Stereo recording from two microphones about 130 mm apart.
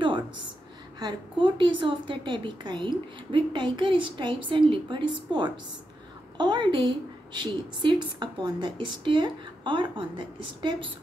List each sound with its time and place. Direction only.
0.9 s a woman's voice: 35° right (ahead or behind)